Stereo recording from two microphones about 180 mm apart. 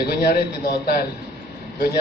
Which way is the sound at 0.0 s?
60° left (ahead or behind).